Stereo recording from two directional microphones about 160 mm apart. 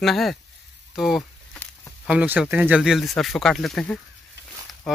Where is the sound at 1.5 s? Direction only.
10° left (ahead or behind).